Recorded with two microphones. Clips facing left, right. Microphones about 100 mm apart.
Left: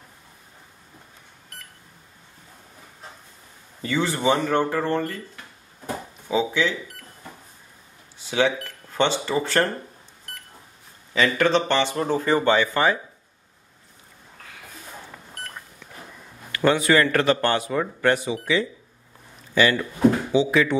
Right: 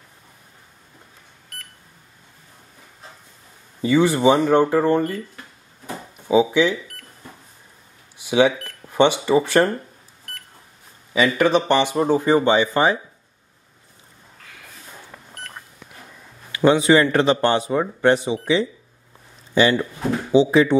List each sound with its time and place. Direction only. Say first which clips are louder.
3.8 s speech: right 7 dB; 15° right (ahead or behind)
6.2 s speech: right 6 dB; 15° right (ahead or behind)
8.2 s speech: right 5 dB; 15° right (ahead or behind)
11.1 s speech: right 3 dB; 10° right (ahead or behind)
15.1 s a sound: even; centre (ahead or behind)
16.5 s speech: right 4 dB; 20° right (ahead or behind)